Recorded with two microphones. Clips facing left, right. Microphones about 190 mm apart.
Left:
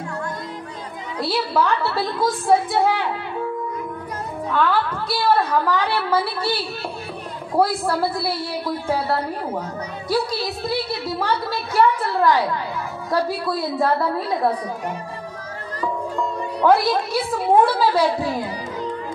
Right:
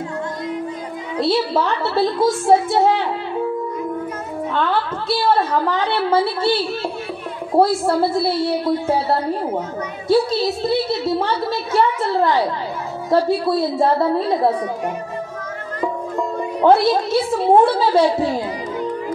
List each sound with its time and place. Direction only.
1.1 s a woman's voice: 25° right (ahead or behind)
4.5 s a woman's voice: 25° right (ahead or behind)
16.6 s a woman's voice: 25° right (ahead or behind)